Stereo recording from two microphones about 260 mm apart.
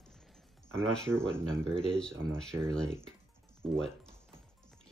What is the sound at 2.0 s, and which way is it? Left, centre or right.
Speech, centre.